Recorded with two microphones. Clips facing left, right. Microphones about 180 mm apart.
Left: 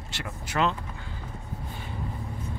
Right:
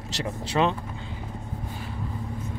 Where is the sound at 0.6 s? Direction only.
20° right (ahead or behind).